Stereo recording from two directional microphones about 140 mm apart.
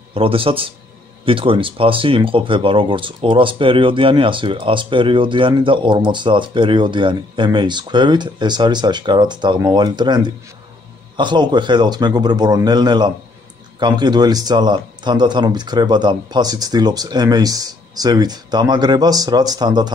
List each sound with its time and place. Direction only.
0.1 s a man's voice: 40° right (ahead or behind)